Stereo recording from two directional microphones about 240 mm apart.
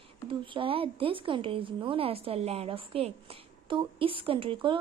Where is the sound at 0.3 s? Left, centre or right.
Right.